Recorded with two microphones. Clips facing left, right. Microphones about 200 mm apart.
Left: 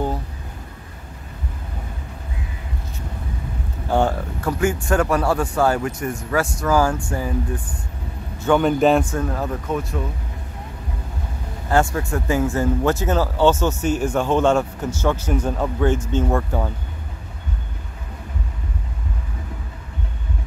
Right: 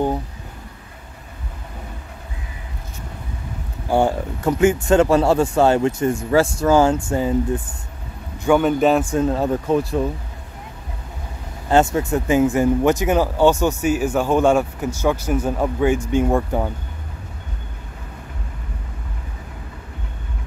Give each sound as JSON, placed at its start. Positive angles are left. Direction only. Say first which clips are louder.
{"t": 3.9, "sound": "speech", "louder": "right 2 dB", "side_deg": -15}
{"t": 8.5, "sound": "a man's voice", "louder": "left 1 dB", "side_deg": 0}
{"t": 9.1, "sound": "speech", "louder": "right 6 dB", "side_deg": -25}
{"t": 11.7, "sound": "speech", "louder": "right 3 dB", "side_deg": -20}